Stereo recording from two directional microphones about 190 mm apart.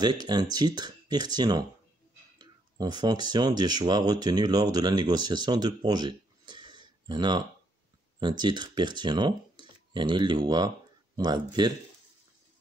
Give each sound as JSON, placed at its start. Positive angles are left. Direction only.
{"t": 0.0, "sound": "speech", "side_deg": -20}